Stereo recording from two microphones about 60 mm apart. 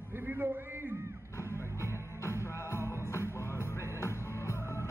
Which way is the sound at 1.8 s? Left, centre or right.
Left.